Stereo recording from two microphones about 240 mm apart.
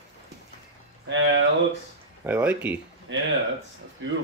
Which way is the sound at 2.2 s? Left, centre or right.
Centre.